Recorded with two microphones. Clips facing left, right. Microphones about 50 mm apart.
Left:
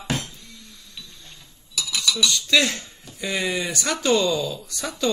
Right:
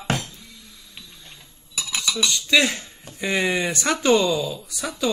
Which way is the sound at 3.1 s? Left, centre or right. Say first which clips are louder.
Right 3 dB; right.